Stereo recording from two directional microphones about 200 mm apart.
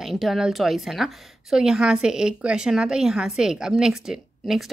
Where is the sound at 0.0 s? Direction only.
Centre (ahead or behind).